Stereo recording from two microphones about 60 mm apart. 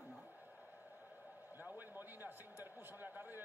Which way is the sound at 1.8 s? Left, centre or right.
Right.